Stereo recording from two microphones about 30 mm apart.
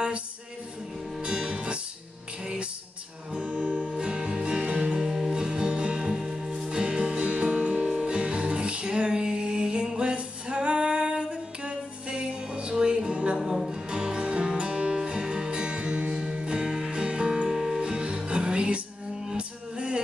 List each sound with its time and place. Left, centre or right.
1.2 s music: right
3.4 s music: right
5.0 s music: centre
5.3 s music: right
6.0 s music: centre
6.7 s music: right
7.9 s music: right
8.2 s music: right
8.8 s female singing: right
13.7 s music: right
16.5 s music: right
16.9 s music: right
17.5 s music: centre
18.0 s music: right